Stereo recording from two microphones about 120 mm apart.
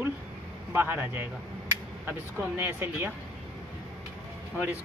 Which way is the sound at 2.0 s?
15° right (ahead or behind).